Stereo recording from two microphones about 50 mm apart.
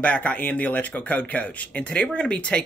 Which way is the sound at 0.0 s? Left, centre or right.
Left.